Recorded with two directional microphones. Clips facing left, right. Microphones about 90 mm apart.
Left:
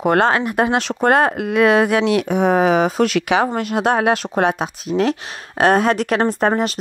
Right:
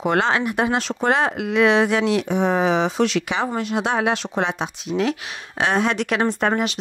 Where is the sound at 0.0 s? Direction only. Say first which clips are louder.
Left 4 dB; 50° left (ahead or behind).